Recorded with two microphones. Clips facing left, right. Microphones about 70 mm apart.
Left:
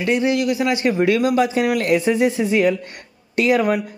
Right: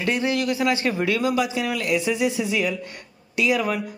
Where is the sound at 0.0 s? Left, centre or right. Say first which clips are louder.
Left 5 dB; left.